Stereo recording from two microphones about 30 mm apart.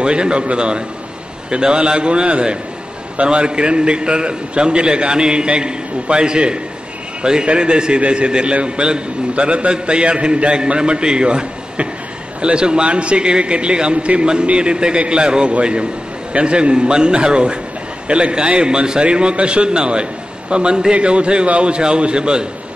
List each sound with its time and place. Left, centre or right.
0.0 s a man's voice: right
9.3 s a man's voice: right